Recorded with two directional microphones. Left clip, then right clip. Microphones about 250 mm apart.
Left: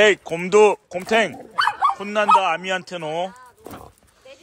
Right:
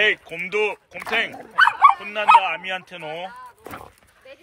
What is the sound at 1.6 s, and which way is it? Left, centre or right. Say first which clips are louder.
Bow-wow: right 5 dB; right.